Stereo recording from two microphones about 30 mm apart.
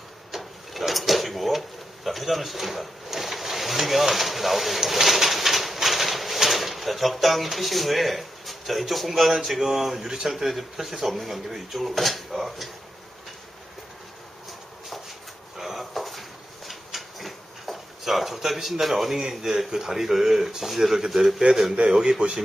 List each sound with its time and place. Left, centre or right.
0.3 s drawer open or close: centre
2.0 s speech: centre
4.8 s bird: centre
7.4 s speech: centre
10.0 s speech: centre
10.4 s speech: centre
15.5 s a sound: centre
19.7 s speech: centre
21.8 s speech: right